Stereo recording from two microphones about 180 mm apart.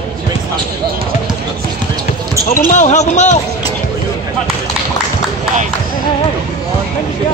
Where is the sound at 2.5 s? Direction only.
45° left (ahead or behind).